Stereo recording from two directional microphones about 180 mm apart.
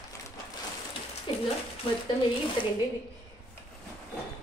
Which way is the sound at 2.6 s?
25° left (ahead or behind).